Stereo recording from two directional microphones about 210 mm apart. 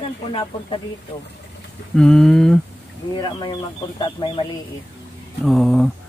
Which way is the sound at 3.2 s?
20° left (ahead or behind).